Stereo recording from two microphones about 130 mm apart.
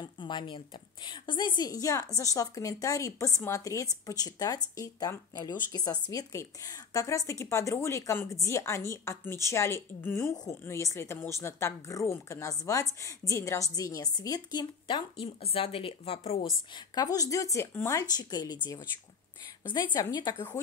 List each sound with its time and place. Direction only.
0.0 s a woman's voice: 35° left (ahead or behind)
16.7 s a woman's voice: 30° left (ahead or behind)
20.3 s speech: 15° left (ahead or behind)